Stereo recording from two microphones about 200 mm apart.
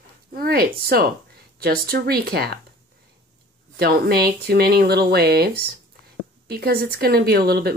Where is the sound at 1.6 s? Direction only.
50° right (ahead or behind).